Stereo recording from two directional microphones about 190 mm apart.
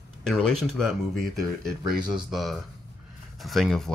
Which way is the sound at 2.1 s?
Centre (ahead or behind).